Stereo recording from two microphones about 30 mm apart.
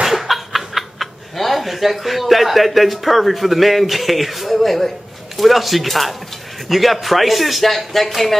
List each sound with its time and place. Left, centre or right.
0.0 s speech: centre